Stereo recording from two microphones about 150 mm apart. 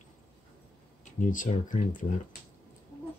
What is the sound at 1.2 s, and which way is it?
Speech, 60° left (ahead or behind).